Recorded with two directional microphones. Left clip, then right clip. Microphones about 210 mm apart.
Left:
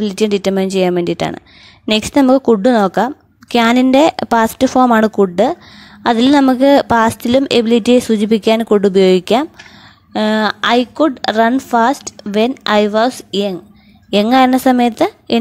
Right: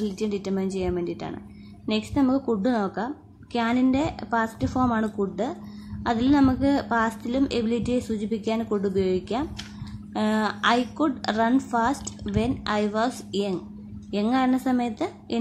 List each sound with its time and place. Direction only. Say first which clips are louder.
0.0 s a woman's voice: left 14 dB; 45° left (ahead or behind)